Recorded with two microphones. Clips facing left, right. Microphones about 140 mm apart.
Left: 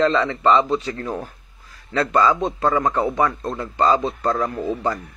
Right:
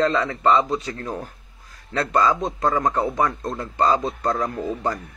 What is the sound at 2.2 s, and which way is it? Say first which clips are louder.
Speech: left 2 dB; centre (ahead or behind).